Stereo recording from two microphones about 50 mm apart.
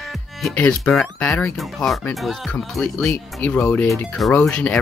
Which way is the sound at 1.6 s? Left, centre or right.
Centre.